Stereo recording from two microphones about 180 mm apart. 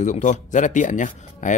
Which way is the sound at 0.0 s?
45° left (ahead or behind).